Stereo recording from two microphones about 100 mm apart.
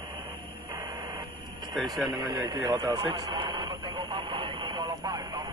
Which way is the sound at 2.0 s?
40° right (ahead or behind).